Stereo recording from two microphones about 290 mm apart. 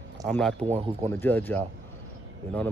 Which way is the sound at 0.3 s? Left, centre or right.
Centre.